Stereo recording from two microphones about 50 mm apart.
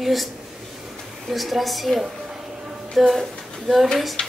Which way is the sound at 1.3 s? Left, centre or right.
Centre.